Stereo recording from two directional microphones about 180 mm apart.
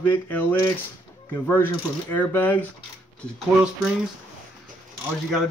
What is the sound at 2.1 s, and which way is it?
Speech, 10° left (ahead or behind).